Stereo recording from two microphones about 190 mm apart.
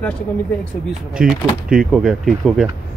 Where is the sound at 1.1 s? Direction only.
Centre (ahead or behind).